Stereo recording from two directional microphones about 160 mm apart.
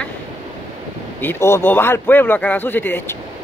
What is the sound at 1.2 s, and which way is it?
Speech, 15° left (ahead or behind).